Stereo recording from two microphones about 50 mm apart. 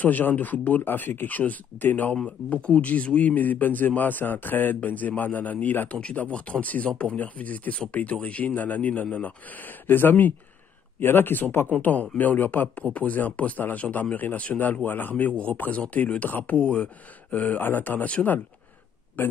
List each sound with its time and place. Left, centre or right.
0.0 s speech: left
2.2 s speech: left
16.5 s speech: left
19.2 s speech: left